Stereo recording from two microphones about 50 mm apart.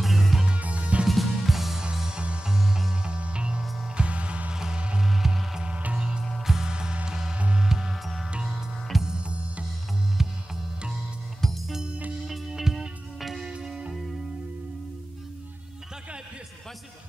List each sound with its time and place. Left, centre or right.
0.0 s music: centre
0.5 s music: right
1.0 s music: centre
2.0 s music: centre
2.5 s music: centre
5.0 s music: centre
5.7 s music: right
5.9 s music: centre
6.7 s music: centre
9.0 s music: centre
10.2 s music: centre
11.4 s music: centre
12.4 s music: centre